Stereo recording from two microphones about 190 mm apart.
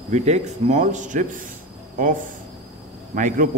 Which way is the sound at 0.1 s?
35° right (ahead or behind).